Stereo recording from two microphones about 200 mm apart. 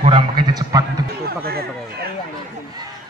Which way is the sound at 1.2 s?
50° right (ahead or behind).